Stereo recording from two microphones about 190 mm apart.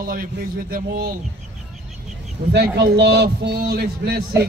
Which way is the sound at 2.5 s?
60° right (ahead or behind).